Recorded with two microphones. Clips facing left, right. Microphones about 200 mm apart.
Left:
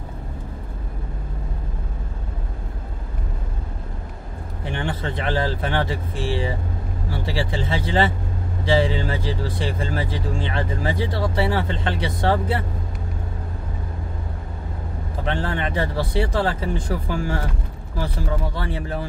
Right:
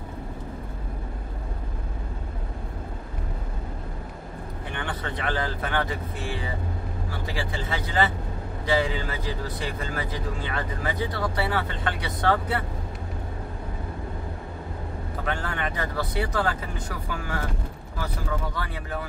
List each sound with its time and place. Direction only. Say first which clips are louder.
4.7 s speech: left 5 dB; 25° left (ahead or behind)
15.2 s speech: left 5 dB; 30° left (ahead or behind)